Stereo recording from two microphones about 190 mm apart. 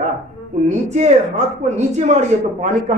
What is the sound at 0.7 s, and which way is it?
A man's voice, 35° right (ahead or behind).